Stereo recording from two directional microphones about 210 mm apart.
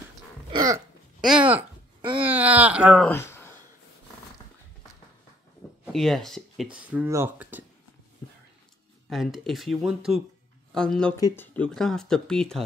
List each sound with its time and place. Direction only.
0.5 s dog: 15° right (ahead or behind)
1.2 s a sound: 5° right (ahead or behind)
2.2 s speech: 5° right (ahead or behind)
3.1 s a sound: 10° left (ahead or behind)
5.9 s speech: centre (ahead or behind)
9.1 s speech: centre (ahead or behind)
11.1 s speech: 15° left (ahead or behind)
11.5 s speech: 5° left (ahead or behind)